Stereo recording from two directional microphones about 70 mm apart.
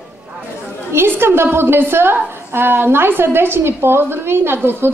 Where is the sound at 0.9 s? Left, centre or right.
Right.